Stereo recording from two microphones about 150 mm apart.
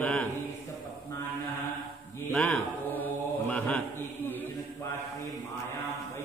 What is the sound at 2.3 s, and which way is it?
Speech, 10° left (ahead or behind).